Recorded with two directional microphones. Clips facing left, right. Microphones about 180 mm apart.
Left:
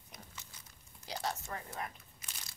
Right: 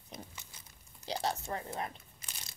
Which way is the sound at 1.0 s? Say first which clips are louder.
Right 4 dB; 30° right (ahead or behind).